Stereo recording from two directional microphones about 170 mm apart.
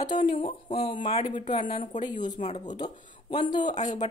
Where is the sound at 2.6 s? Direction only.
25° left (ahead or behind).